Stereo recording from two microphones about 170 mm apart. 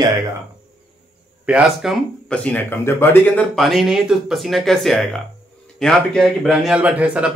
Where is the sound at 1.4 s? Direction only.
5° right (ahead or behind).